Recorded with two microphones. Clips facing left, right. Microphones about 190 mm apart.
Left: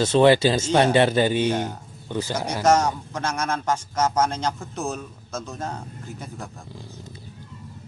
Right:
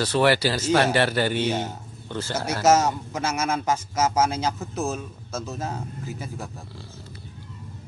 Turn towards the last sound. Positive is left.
turn(degrees=-5)  # may be behind; listen again after turning